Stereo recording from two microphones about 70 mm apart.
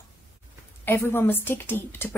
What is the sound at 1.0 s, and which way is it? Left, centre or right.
Speech, left.